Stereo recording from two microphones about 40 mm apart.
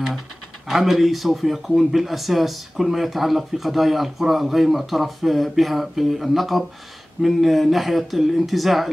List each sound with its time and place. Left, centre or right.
0.7 s speech: centre